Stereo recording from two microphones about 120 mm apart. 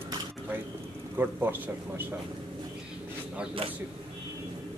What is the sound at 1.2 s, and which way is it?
Speech, 15° right (ahead or behind).